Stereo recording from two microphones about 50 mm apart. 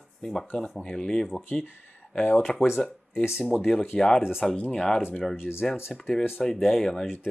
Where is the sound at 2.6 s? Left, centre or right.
Left.